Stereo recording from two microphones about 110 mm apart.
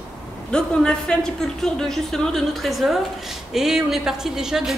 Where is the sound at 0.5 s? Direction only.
5° left (ahead or behind).